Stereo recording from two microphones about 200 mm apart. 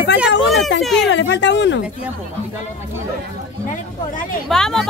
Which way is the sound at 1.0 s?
65° left (ahead or behind).